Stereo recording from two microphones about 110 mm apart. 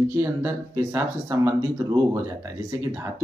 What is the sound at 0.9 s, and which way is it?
Speech, 25° right (ahead or behind).